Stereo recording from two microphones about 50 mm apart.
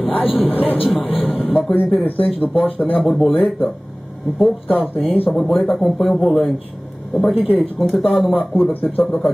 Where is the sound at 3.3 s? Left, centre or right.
Left.